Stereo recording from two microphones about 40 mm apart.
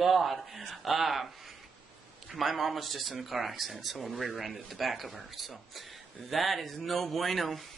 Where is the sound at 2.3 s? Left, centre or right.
Centre.